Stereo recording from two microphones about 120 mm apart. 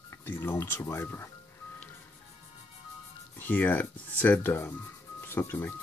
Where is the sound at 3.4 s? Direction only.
15° left (ahead or behind).